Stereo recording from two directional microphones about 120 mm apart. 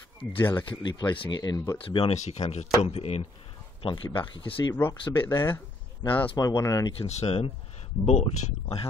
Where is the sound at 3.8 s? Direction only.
40° left (ahead or behind).